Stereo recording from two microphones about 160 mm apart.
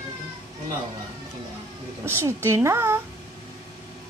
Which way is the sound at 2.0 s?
15° right (ahead or behind).